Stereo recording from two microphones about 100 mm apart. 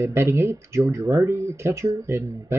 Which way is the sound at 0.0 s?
25° right (ahead or behind).